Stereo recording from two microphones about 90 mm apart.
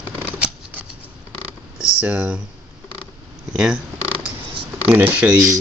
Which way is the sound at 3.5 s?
10° right (ahead or behind).